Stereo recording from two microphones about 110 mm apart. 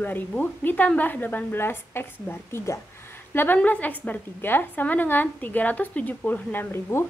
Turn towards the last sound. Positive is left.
turn(degrees=20)  # may be behind; listen again after turning